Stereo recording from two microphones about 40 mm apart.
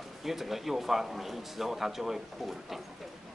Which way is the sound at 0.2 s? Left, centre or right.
Centre.